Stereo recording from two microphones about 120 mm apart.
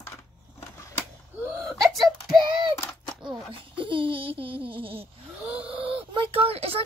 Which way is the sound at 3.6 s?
45° right (ahead or behind).